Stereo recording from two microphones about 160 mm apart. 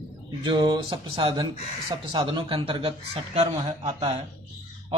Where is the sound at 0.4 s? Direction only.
30° right (ahead or behind).